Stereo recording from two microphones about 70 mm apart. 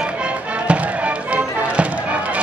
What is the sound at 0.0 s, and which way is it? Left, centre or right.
Music, centre.